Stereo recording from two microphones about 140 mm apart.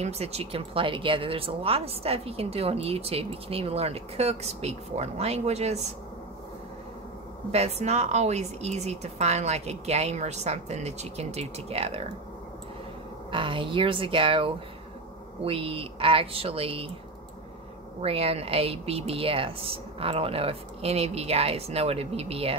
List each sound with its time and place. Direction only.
0.0 s speech: 50° right (ahead or behind)
7.5 s speech: 50° right (ahead or behind)
13.3 s speech: 35° right (ahead or behind)
18.0 s speech: 45° right (ahead or behind)